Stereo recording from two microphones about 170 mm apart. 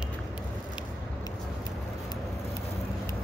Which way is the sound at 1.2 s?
20° left (ahead or behind).